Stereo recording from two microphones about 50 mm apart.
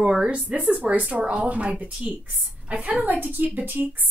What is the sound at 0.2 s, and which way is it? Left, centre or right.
A woman's voice, right.